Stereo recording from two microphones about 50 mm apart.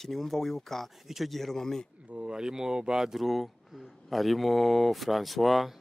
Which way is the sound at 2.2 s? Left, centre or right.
Centre.